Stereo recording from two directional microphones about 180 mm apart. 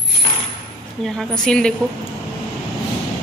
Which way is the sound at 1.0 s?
Centre (ahead or behind).